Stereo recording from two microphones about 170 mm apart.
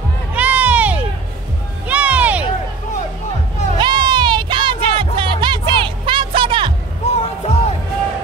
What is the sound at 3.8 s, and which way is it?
Music, 25° right (ahead or behind).